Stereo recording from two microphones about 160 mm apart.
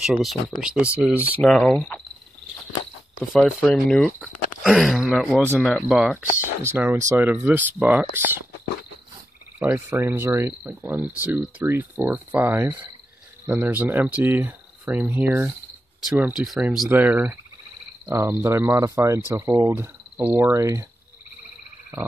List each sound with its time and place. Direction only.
0.0 s speech: 5° right (ahead or behind)
1.4 s speech: centre (ahead or behind)
3.3 s speech: centre (ahead or behind)
6.6 s speech: 15° right (ahead or behind)
9.6 s speech: 15° right (ahead or behind)